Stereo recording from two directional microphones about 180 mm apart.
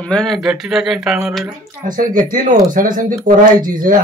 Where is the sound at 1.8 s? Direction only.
50° right (ahead or behind).